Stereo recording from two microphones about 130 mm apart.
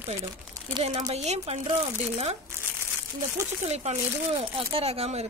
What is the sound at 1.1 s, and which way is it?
Speech, 55° right (ahead or behind).